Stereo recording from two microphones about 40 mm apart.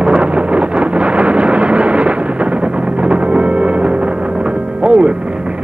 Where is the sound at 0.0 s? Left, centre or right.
Right.